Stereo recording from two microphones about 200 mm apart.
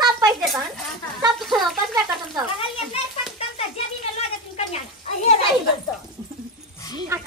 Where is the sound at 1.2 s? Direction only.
Centre (ahead or behind).